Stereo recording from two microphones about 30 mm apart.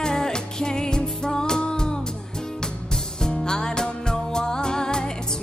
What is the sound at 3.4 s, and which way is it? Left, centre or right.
Music, left.